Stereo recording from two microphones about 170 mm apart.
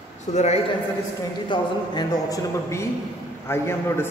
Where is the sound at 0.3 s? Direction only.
40° left (ahead or behind).